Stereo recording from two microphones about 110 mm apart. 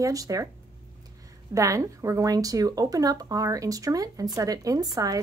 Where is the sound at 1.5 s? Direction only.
30° right (ahead or behind).